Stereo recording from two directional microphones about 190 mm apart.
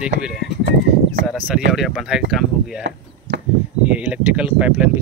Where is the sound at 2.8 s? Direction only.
65° right (ahead or behind).